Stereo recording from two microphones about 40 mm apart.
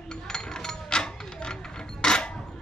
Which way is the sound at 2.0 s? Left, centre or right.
Left.